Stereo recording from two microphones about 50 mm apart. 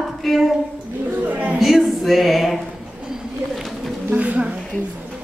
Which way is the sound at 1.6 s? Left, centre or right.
Centre.